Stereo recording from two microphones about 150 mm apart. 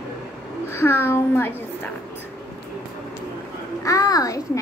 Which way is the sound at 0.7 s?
15° left (ahead or behind).